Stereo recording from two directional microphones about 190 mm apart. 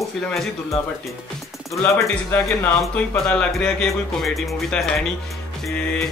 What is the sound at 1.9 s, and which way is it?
Speech, 10° left (ahead or behind).